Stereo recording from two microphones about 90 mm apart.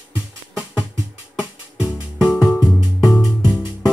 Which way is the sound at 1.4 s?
15° right (ahead or behind).